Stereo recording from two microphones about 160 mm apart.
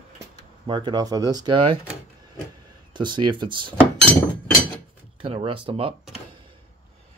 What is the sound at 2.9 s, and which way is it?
Speech, 30° right (ahead or behind).